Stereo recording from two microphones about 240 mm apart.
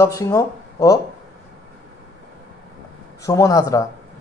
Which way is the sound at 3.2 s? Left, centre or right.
Centre.